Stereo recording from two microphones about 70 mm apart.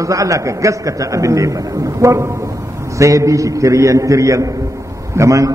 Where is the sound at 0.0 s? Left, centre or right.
Right.